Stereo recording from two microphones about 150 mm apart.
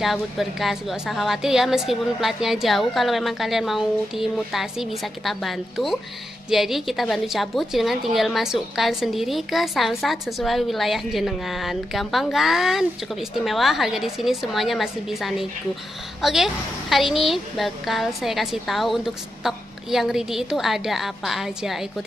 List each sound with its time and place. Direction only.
0.0 s a woman's voice: centre (ahead or behind)